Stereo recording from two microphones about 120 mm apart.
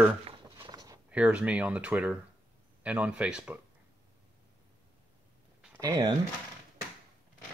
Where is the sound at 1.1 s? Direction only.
10° right (ahead or behind).